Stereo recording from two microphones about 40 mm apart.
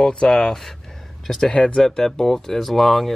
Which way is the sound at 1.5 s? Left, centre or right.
Centre.